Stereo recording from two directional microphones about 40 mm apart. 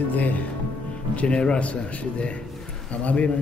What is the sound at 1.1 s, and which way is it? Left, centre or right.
A man's voice, left.